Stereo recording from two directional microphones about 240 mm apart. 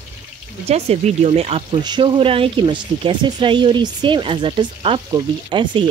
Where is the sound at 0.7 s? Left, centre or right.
Right.